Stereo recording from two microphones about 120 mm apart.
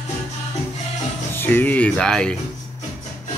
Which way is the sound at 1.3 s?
20° left (ahead or behind).